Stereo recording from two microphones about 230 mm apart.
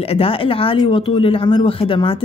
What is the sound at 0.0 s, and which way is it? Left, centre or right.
Speech, left.